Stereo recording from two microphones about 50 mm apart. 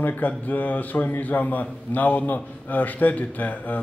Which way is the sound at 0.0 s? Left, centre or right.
Left.